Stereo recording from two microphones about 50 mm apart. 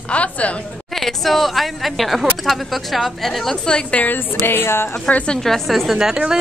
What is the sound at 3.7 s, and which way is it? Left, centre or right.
Speech, left.